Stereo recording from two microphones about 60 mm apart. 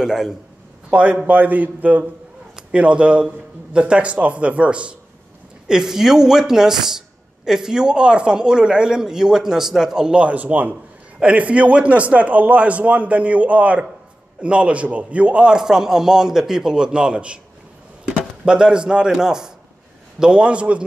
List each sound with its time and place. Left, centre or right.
0.0 s speech: centre
0.8 s a man's voice: right
5.7 s a man's voice: centre